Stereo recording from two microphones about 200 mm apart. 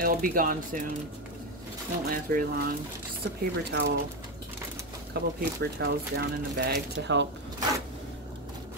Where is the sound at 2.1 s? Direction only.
45° right (ahead or behind).